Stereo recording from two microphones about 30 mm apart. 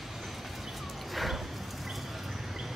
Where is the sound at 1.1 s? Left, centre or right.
Centre.